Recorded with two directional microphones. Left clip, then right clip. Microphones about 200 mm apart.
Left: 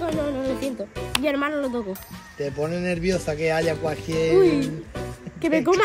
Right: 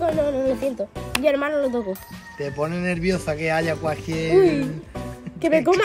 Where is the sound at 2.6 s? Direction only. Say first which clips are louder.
Right 1 dB; 25° right (ahead or behind).